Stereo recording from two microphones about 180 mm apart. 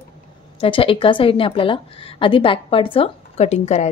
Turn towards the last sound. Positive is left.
turn(degrees=35)  # may be behind; listen again after turning